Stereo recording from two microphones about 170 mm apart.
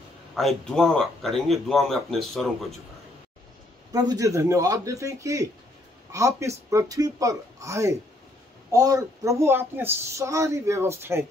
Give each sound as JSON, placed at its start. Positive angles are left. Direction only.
{"t": 0.3, "sound": "a man's voice", "side_deg": 0}
{"t": 3.9, "sound": "a man's voice", "side_deg": -20}